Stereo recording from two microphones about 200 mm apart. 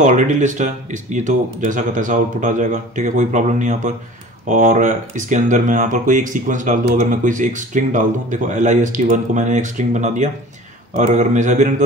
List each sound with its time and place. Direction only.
0.0 s speech: 40° right (ahead or behind)